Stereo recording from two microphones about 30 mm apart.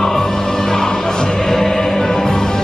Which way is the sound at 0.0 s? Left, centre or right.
Centre.